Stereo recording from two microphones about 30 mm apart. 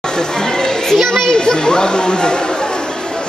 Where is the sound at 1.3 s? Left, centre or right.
Left.